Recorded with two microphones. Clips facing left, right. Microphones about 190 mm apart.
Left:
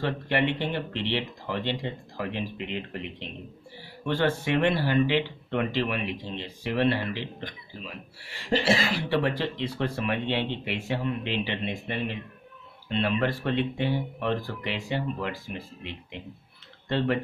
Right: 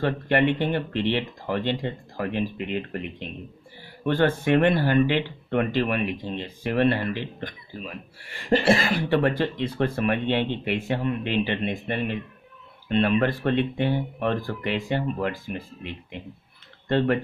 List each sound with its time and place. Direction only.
0.0 s speech: 50° right (ahead or behind)